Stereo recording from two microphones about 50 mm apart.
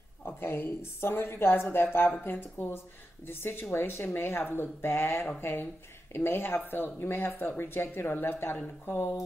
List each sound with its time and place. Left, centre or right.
0.4 s speech: left
5.4 s speech: left